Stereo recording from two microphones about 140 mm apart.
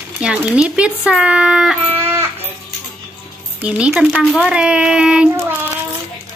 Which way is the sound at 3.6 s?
5° right (ahead or behind).